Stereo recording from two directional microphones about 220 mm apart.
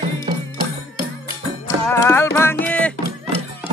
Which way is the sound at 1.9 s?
10° left (ahead or behind).